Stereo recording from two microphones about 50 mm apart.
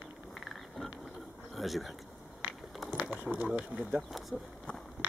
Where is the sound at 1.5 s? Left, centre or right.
Centre.